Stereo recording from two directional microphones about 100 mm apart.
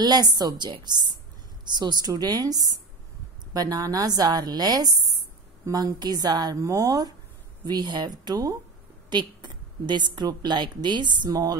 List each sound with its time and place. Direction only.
0.0 s a woman's voice: 45° right (ahead or behind)